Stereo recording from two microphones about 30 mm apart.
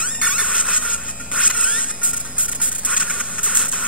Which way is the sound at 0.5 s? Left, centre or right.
Left.